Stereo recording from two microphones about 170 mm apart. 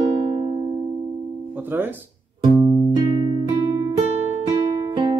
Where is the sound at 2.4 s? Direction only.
30° right (ahead or behind).